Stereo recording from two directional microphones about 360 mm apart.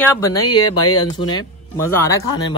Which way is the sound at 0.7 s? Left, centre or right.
Left.